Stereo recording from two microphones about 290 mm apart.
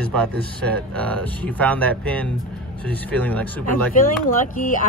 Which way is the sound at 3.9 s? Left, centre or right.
Left.